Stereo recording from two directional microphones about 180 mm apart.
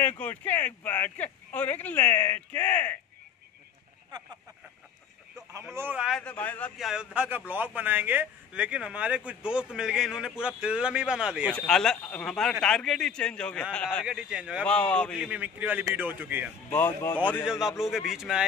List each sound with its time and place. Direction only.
0.0 s a man's voice: 10° left (ahead or behind)
5.8 s a man's voice: 10° right (ahead or behind)
6.2 s a man's voice: 10° left (ahead or behind)
7.2 s a man's voice: 10° right (ahead or behind); by 14.0 s 5° left (ahead or behind)
14.0 s a man's voice: 5° right (ahead or behind)
14.7 s a man's voice: 5° left (ahead or behind)
15.1 s a man's voice: 5° right (ahead or behind)
16.7 s a man's voice: 10° left (ahead or behind)
17.5 s a man's voice: centre (ahead or behind)